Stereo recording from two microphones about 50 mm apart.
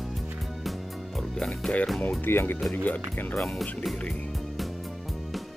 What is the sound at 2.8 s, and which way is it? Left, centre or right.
Speech, left.